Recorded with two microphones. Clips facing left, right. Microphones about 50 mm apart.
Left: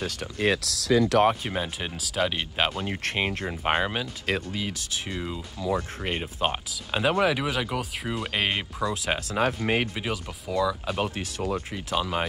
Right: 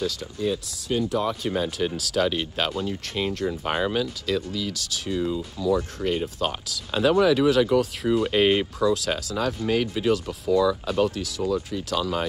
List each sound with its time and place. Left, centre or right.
0.0 s speech: left
0.4 s speech: left
1.4 s speech: left
2.0 s speech: centre
2.8 s speech: left
4.5 s speech: left
6.2 s speech: centre
8.8 s speech: left
9.3 s speech: left
10.0 s speech: centre
11.1 s speech: left
11.7 s speech: left